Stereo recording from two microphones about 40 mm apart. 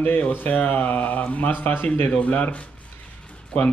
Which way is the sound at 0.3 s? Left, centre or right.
Left.